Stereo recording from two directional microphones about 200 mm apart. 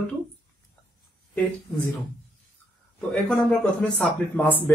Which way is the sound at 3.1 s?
5° left (ahead or behind).